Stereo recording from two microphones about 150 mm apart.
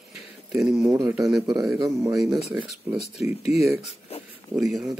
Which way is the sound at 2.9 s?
45° left (ahead or behind).